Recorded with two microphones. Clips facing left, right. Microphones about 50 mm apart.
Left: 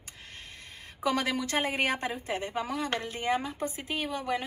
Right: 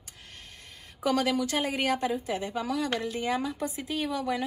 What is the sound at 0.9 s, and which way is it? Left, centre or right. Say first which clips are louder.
A woman's voice: right 3 dB; left.